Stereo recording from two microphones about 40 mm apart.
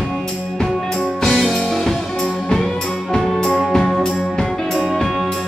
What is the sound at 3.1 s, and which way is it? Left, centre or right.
Music, centre.